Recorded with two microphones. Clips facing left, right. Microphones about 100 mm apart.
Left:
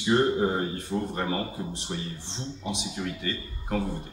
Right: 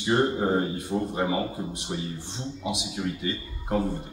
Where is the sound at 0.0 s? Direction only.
20° right (ahead or behind).